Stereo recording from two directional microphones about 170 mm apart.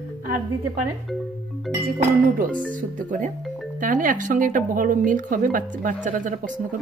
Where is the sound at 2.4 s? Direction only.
50° right (ahead or behind).